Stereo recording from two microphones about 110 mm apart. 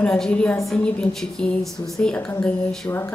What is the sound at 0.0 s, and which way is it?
A woman's voice, 10° left (ahead or behind).